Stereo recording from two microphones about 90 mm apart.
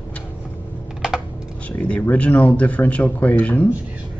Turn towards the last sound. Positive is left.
turn(degrees=15)  # may be behind; listen again after turning